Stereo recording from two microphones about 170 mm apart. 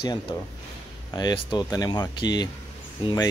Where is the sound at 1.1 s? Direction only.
25° left (ahead or behind).